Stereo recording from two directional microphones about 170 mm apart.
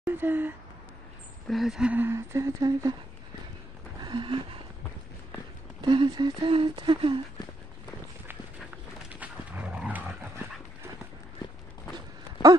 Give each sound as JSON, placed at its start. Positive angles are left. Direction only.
{"t": 0.0, "sound": "speech", "side_deg": -10}
{"t": 1.5, "sound": "speech", "side_deg": 0}
{"t": 4.0, "sound": "a sound", "side_deg": -30}
{"t": 5.8, "sound": "speech", "side_deg": -25}
{"t": 9.1, "sound": "dog", "side_deg": -10}